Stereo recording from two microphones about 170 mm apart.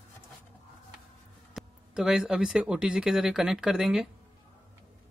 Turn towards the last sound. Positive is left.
turn(degrees=-5)  # may be behind; listen again after turning